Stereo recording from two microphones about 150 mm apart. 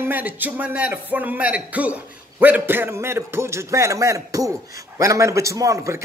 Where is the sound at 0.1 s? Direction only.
10° right (ahead or behind).